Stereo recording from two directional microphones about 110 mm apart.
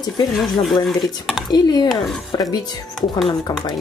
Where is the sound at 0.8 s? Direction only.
Centre (ahead or behind).